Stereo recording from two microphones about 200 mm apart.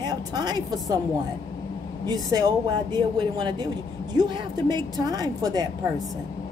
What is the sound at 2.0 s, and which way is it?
Speech, 20° right (ahead or behind).